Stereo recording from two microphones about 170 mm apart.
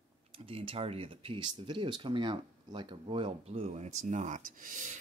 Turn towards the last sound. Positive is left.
turn(degrees=-50)  # may be behind; listen again after turning